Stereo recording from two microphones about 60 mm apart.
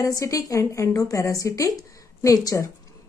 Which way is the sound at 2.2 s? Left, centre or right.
Left.